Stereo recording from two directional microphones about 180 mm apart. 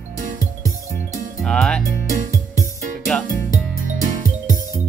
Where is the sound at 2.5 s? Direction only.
15° left (ahead or behind).